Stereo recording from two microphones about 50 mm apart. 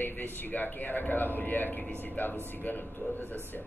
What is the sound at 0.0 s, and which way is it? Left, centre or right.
Speech, left.